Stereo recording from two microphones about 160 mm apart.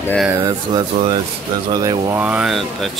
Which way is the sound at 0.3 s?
20° right (ahead or behind).